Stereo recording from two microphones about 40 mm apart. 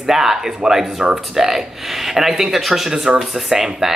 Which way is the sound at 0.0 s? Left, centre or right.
Centre.